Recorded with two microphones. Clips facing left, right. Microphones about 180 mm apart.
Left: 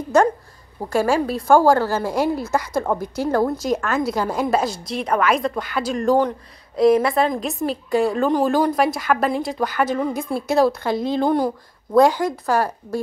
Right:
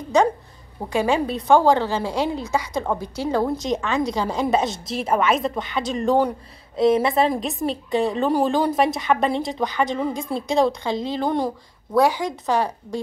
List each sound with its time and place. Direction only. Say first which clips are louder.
0.8 s a woman's voice: left 2 dB; 20° right (ahead or behind)
1.3 s a woman's voice: left 2 dB; 5° left (ahead or behind)
2.4 s a woman's voice: left 2 dB; 15° right (ahead or behind)
2.9 s a woman's voice: left 2 dB; 10° left (ahead or behind)
3.3 s a woman's voice: left 2 dB; 10° right (ahead or behind)
3.6 s a woman's voice: left 1 dB; 5° left (ahead or behind)
6.8 s a woman's voice: left 2 dB; 25° right (ahead or behind)
7.3 s a woman's voice: left 1 dB; centre (ahead or behind)
11.2 s a woman's voice: left 3 dB; centre (ahead or behind)
12.0 s a woman's voice: left 4 dB; 15° right (ahead or behind)